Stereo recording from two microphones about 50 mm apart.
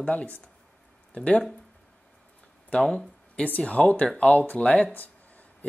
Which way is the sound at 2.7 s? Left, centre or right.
Left.